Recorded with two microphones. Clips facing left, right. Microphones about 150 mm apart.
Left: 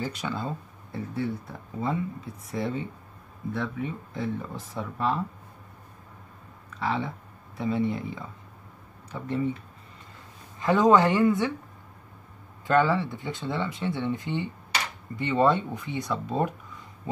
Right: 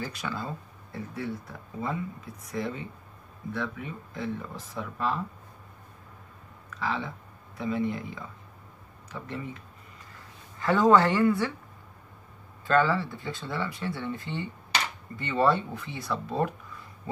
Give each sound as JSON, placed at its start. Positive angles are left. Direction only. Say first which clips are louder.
{"t": 0.0, "sound": "speech", "louder": "left 3 dB", "side_deg": 20}
{"t": 2.4, "sound": "speech", "louder": "left 3 dB", "side_deg": 25}
{"t": 6.8, "sound": "speech", "louder": "left 3 dB", "side_deg": 25}
{"t": 10.6, "sound": "speech", "louder": "left 1 dB", "side_deg": 20}
{"t": 12.6, "sound": "speech", "louder": "left 2 dB", "side_deg": 20}